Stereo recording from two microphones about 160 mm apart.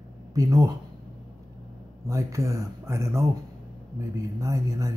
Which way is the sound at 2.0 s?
20° right (ahead or behind).